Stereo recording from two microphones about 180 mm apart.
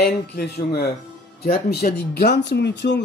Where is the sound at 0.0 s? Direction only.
60° left (ahead or behind).